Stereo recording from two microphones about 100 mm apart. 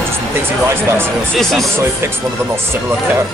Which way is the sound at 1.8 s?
25° right (ahead or behind).